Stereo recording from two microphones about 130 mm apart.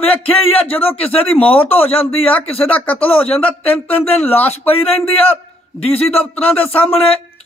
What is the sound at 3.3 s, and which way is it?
Speech, 45° left (ahead or behind).